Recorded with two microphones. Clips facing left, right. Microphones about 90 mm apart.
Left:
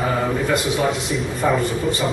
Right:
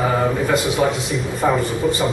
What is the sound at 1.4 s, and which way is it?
Speech, 15° right (ahead or behind).